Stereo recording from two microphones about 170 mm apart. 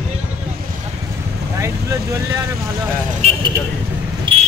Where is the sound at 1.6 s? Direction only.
15° right (ahead or behind).